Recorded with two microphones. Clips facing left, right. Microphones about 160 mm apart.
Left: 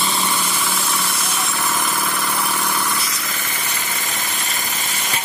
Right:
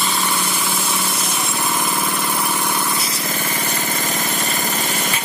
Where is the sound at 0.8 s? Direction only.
20° right (ahead or behind).